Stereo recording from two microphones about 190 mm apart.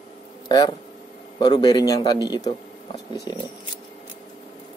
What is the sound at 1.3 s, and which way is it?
Speech, 25° left (ahead or behind).